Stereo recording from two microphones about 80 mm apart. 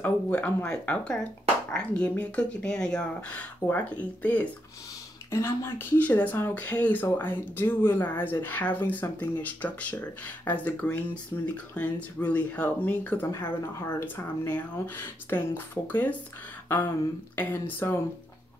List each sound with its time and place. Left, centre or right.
0.0 s speech: centre
5.3 s speech: left
13.3 s speech: left
17.4 s speech: left